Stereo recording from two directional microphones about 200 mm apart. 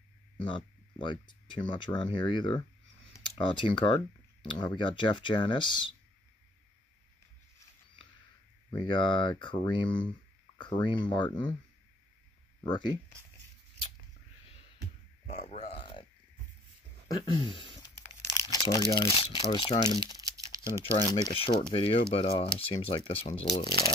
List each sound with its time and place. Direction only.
0.9 s speech: 25° left (ahead or behind)
3.1 s computer keyboard: 25° left (ahead or behind)
4.4 s speech: 25° left (ahead or behind)
8.6 s speech: 25° left (ahead or behind)
12.6 s speech: 20° left (ahead or behind)
15.2 s a sound: 35° left (ahead or behind)
17.1 s speech: 25° left (ahead or behind)
20.2 s crumpling: 15° right (ahead or behind)
20.8 s speech: 20° left (ahead or behind)